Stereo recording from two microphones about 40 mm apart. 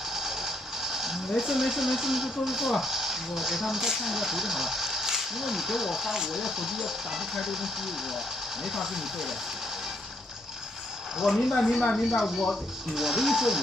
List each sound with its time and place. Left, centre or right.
0.1 s speech: centre
11.3 s speech: centre
12.2 s speech: centre